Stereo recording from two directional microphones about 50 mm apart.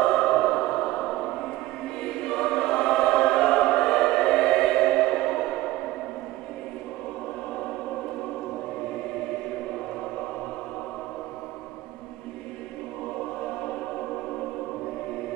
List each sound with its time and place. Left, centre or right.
0.3 s music: centre
2.0 s choir: centre